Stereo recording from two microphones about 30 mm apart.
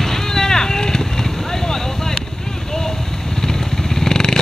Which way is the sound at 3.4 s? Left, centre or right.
Centre.